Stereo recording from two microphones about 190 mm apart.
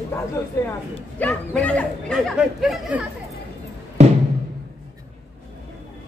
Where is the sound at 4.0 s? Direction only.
35° right (ahead or behind).